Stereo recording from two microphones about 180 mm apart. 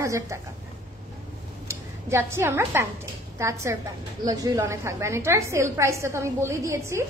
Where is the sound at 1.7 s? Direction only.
15° right (ahead or behind).